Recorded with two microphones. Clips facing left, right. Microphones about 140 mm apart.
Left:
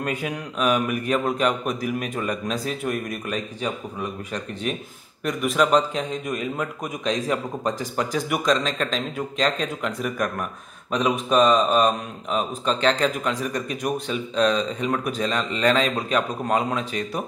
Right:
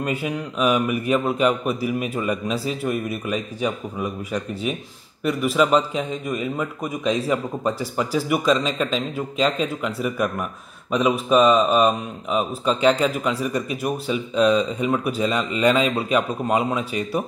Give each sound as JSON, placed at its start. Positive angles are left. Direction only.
{"t": 0.0, "sound": "a man's voice", "side_deg": -5}